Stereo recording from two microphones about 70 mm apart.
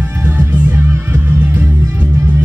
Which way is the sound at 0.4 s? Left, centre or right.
Right.